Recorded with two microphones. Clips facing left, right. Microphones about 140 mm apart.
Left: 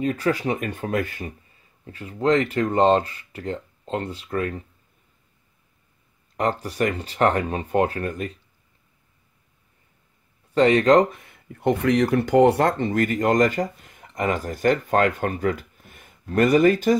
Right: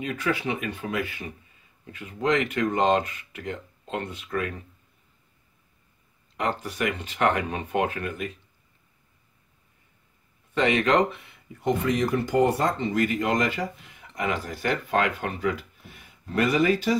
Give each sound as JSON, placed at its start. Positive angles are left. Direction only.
{"t": 0.0, "sound": "speech", "side_deg": 35}
{"t": 1.9, "sound": "speech", "side_deg": 35}
{"t": 6.3, "sound": "speech", "side_deg": 40}
{"t": 10.5, "sound": "speech", "side_deg": 35}
{"t": 11.6, "sound": "speech", "side_deg": 65}